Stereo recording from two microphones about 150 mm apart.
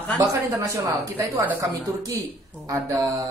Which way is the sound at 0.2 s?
20° right (ahead or behind).